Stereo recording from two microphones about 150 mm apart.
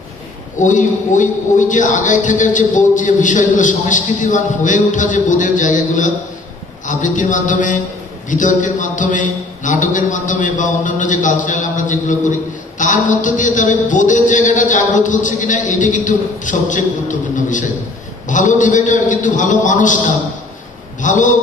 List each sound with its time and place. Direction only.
0.6 s a man's voice: 60° left (ahead or behind)
21.0 s a man's voice: 60° left (ahead or behind)